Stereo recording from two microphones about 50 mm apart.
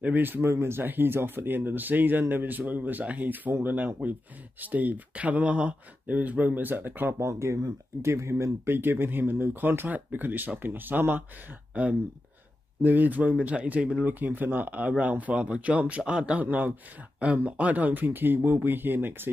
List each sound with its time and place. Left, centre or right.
0.1 s speech: right
0.4 s speech: right
0.8 s speech: right
7.2 s speech: right
8.6 s speech: right
11.7 s speech: right
13.9 s a man's voice: right; by 16.3 s centre
16.3 s speech: right